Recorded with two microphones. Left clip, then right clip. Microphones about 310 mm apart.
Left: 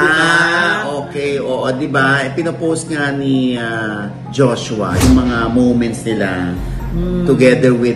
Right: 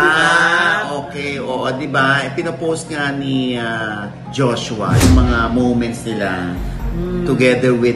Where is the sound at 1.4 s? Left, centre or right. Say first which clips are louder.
Left 3 dB; centre.